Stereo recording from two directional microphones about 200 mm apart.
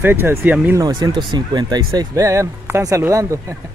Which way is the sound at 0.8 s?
20° right (ahead or behind).